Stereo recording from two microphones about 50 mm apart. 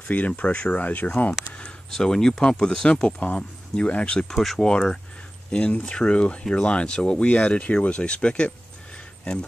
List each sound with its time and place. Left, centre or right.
0.1 s speech: left
2.0 s speech: centre
4.3 s speech: centre
5.5 s speech: left